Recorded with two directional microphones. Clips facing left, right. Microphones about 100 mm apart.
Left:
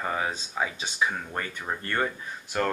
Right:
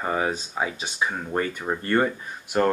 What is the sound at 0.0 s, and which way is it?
Speech, 10° right (ahead or behind).